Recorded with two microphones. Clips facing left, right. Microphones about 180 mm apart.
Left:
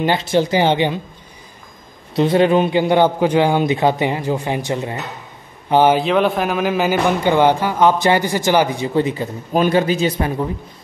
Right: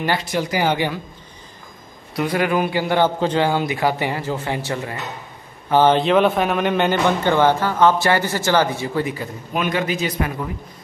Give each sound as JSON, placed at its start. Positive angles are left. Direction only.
{"t": 0.0, "sound": "a man's voice", "side_deg": 25}
{"t": 2.1, "sound": "a man's voice", "side_deg": 25}
{"t": 5.9, "sound": "a man's voice", "side_deg": 0}